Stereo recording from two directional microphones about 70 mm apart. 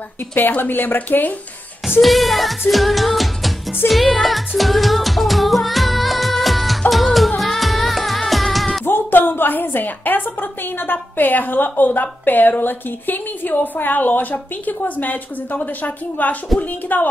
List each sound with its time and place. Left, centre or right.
0.4 s a woman's voice: left
2.0 s music: centre
8.8 s a woman's voice: left